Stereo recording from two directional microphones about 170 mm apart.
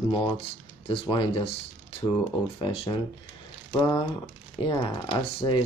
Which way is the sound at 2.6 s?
30° left (ahead or behind).